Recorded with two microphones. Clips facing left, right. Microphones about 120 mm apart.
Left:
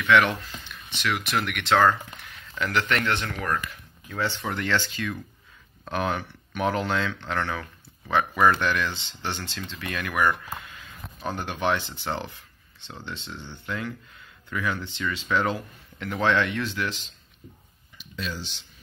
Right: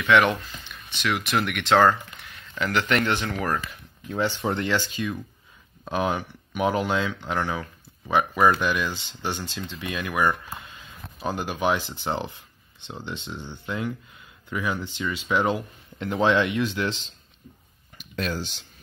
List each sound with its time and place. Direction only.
0.1 s speech: 10° right (ahead or behind)
4.1 s speech: 20° right (ahead or behind)
10.6 s a sound: 25° right (ahead or behind)
11.1 s speech: 10° right (ahead or behind)
16.8 s speech: 30° right (ahead or behind)
17.9 s a sound: 50° right (ahead or behind)